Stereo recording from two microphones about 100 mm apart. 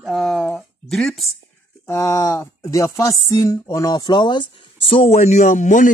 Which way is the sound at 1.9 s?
35° left (ahead or behind).